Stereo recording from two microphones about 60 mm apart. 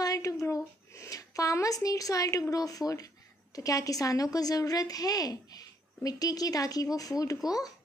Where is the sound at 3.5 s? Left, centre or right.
Left.